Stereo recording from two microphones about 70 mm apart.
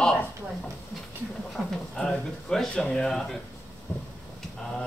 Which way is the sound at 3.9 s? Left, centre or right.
Left.